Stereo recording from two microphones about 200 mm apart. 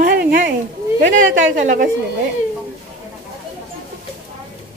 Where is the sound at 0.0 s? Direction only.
45° right (ahead or behind).